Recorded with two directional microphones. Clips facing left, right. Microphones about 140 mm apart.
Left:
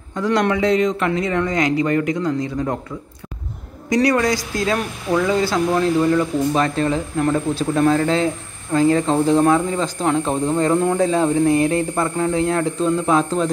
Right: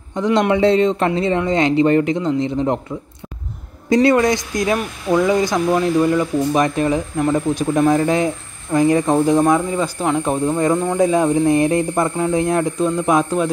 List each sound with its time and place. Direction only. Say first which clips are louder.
0.1 s a man's voice: right 2 dB; 20° right (ahead or behind)
3.9 s a man's voice: right 3 dB; 25° right (ahead or behind)